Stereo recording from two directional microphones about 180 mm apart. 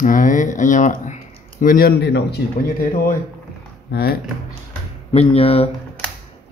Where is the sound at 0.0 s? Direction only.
45° left (ahead or behind); by 2.4 s 70° left (ahead or behind).